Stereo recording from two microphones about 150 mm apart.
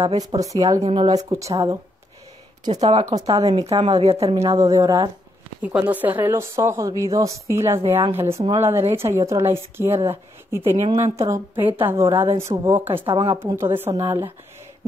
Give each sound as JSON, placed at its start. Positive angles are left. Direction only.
{"t": 0.2, "sound": "speech", "side_deg": -25}
{"t": 2.8, "sound": "speech", "side_deg": -30}
{"t": 4.4, "sound": "speech", "side_deg": -25}
{"t": 5.6, "sound": "speech", "side_deg": -10}
{"t": 12.9, "sound": "speech", "side_deg": -35}
{"t": 13.4, "sound": "speech", "side_deg": -20}